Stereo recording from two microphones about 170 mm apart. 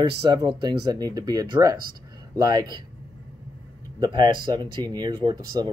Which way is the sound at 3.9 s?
25° right (ahead or behind).